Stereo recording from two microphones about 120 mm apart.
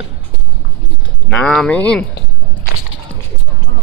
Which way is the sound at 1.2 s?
5° left (ahead or behind).